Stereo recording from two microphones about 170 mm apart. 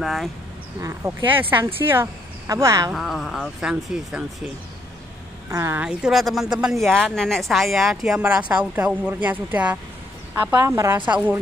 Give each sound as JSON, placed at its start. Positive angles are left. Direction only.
{"t": 0.0, "sound": "a woman's voice", "side_deg": 0}
{"t": 0.7, "sound": "speech", "side_deg": -15}
{"t": 2.9, "sound": "a woman's voice", "side_deg": 0}
{"t": 5.5, "sound": "speech", "side_deg": -15}
{"t": 5.9, "sound": "a woman's voice", "side_deg": -5}